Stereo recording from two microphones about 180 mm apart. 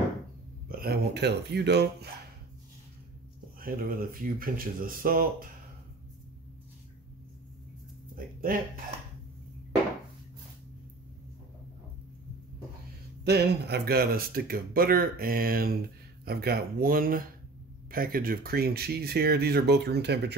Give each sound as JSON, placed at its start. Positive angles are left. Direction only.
{"t": 0.7, "sound": "speech", "side_deg": -55}
{"t": 3.5, "sound": "speech", "side_deg": -50}
{"t": 8.5, "sound": "speech", "side_deg": -50}
{"t": 13.2, "sound": "speech", "side_deg": -65}